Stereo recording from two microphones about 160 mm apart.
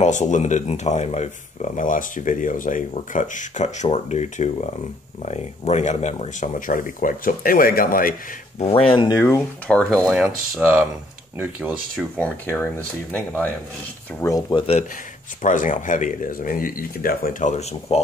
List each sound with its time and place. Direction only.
0.0 s speech: 50° left (ahead or behind)
8.7 s speech: 35° left (ahead or behind)
9.2 s speech: 10° left (ahead or behind)
10.2 s speech: 10° right (ahead or behind)
11.9 s speech: 5° left (ahead or behind)
14.2 s speech: 20° left (ahead or behind)
15.4 s speech: 55° left (ahead or behind)